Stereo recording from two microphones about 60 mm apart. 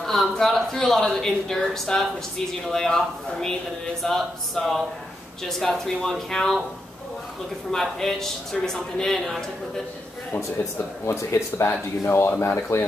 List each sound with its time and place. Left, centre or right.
0.0 s a woman's voice: centre
7.7 s a man's voice: centre
10.6 s speech: left